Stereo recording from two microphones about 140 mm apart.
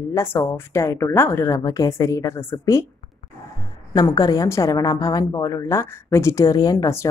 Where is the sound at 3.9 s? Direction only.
25° left (ahead or behind).